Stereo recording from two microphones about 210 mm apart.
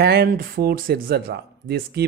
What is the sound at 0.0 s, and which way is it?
A man's voice, 50° right (ahead or behind).